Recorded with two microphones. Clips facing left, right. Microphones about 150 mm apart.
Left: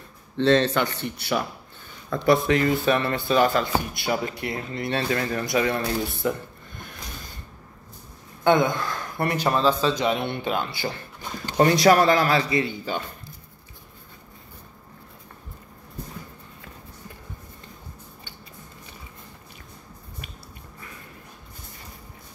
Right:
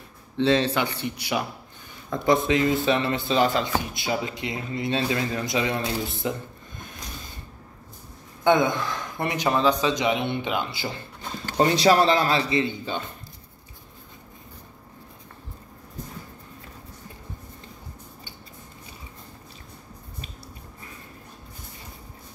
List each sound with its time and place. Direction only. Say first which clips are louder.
0.4 s speech: left 2 dB; 10° right (ahead or behind)
2.2 s speech: left 1 dB; 20° right (ahead or behind)
3.9 s speech: left 1 dB; 50° left (ahead or behind)
4.2 s speech: left 1 dB; 20° right (ahead or behind)
8.5 s speech: even; 20° right (ahead or behind)